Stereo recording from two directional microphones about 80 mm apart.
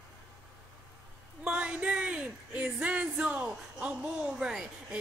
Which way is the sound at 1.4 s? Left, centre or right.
Centre.